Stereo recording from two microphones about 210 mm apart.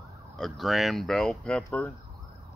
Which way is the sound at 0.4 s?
Centre (ahead or behind).